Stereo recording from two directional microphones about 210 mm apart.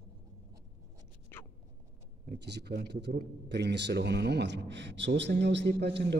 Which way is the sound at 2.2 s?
50° right (ahead or behind).